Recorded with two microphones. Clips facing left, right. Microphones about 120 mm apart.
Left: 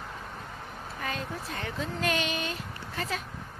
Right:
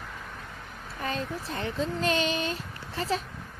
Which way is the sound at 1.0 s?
35° right (ahead or behind).